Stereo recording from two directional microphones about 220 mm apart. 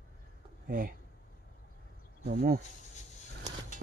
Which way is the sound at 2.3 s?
40° right (ahead or behind).